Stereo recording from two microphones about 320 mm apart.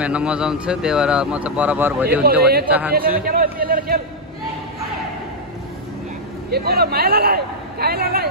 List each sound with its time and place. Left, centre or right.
0.0 s speech: centre
2.2 s speech: right
6.5 s speech: right